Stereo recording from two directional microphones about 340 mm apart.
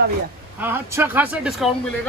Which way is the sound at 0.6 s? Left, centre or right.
Centre.